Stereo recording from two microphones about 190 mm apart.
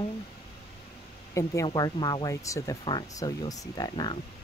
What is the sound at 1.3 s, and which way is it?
Speech, 15° left (ahead or behind).